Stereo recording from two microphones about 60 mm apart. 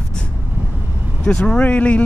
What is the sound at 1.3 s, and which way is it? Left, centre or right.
Speech, centre.